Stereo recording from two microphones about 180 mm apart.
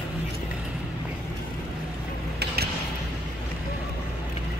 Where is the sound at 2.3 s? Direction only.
60° right (ahead or behind).